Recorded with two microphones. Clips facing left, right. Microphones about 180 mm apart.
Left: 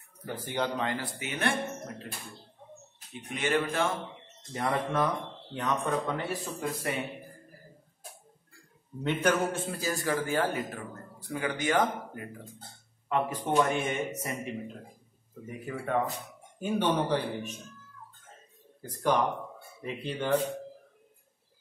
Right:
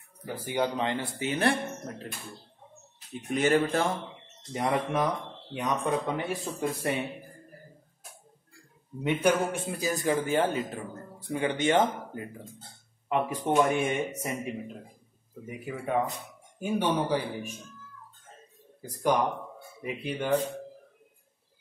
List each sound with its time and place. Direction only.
0.2 s speech: 10° right (ahead or behind); by 1.5 s 30° right (ahead or behind)
3.3 s speech: 40° right (ahead or behind)
4.5 s speech: 15° right (ahead or behind)
6.4 s speech: 25° right (ahead or behind)
9.0 s speech: 10° right (ahead or behind)
15.4 s speech: 10° right (ahead or behind)
18.8 s speech: 10° right (ahead or behind)